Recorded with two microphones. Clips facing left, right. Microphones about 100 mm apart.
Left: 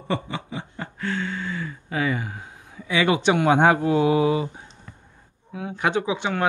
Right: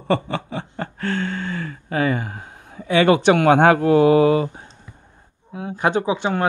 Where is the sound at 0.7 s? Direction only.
55° right (ahead or behind).